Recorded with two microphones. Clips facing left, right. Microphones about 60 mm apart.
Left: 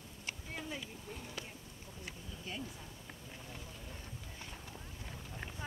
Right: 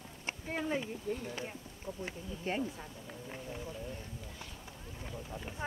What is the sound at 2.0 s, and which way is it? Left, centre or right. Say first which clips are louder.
Speech: right 7 dB; right.